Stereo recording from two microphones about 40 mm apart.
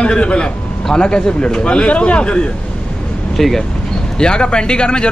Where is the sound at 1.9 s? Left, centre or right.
Left.